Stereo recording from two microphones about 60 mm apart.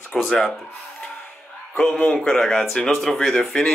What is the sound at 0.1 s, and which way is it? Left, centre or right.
Speech, centre.